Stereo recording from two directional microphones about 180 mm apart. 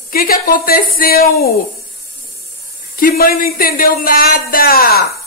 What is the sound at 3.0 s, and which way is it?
Speech, 55° left (ahead or behind).